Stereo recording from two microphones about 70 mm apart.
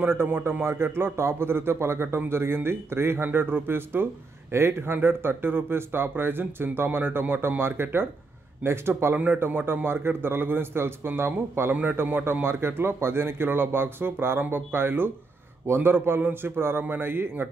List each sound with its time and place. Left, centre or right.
0.0 s a man's voice: right
9.1 s a man's voice: right